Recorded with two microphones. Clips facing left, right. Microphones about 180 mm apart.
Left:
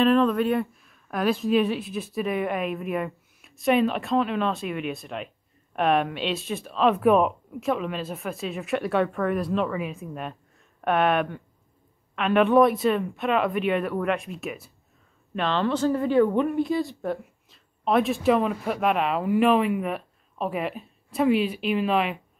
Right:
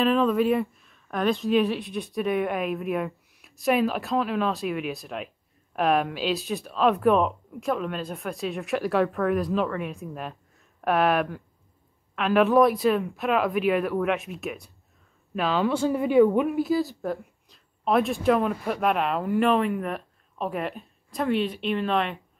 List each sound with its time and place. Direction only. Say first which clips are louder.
0.0 s speech: left 1 dB; centre (ahead or behind)